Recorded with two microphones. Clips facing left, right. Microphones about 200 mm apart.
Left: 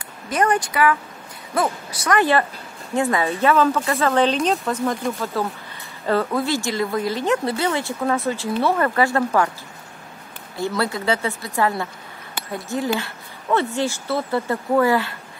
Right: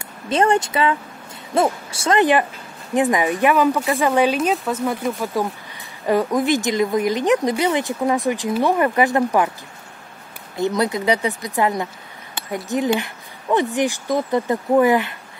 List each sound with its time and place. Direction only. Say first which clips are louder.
0.3 s speech: right 3 dB; 25° right (ahead or behind)
10.5 s speech: right 3 dB; 20° right (ahead or behind)